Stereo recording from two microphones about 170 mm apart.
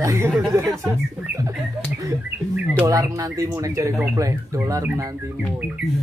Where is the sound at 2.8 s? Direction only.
20° right (ahead or behind).